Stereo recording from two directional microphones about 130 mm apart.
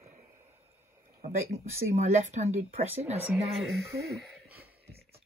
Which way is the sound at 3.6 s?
Centre (ahead or behind).